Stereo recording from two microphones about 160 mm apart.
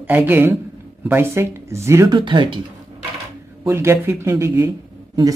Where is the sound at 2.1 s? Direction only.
30° right (ahead or behind).